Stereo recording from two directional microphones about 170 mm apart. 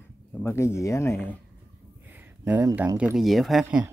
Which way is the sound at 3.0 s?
5° right (ahead or behind).